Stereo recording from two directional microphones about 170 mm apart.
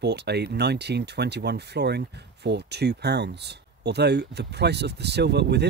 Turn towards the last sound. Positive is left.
turn(degrees=-80)